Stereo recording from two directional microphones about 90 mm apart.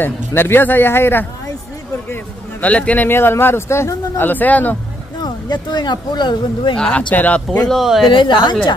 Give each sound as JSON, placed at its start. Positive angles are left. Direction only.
{"t": 0.0, "sound": "speech", "side_deg": 25}
{"t": 2.6, "sound": "speech", "side_deg": 15}
{"t": 4.2, "sound": "speech", "side_deg": 20}
{"t": 5.2, "sound": "speech", "side_deg": 50}
{"t": 6.8, "sound": "speech", "side_deg": 15}
{"t": 7.6, "sound": "speech", "side_deg": 0}
{"t": 8.0, "sound": "a woman's voice", "side_deg": 65}